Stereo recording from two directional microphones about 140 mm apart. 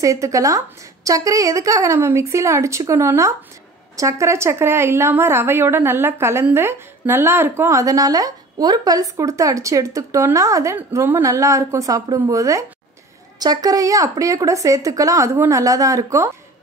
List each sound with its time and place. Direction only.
0.0 s a woman's voice: 20° right (ahead or behind)